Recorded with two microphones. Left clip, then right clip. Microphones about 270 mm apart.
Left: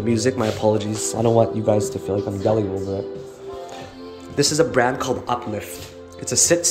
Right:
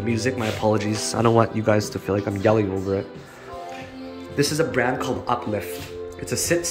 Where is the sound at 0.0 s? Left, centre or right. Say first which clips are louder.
Left 4 dB; centre.